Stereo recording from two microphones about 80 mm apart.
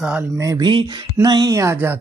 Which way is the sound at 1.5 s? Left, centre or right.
Right.